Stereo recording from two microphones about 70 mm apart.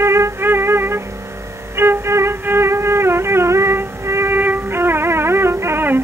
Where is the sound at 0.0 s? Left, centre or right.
Right.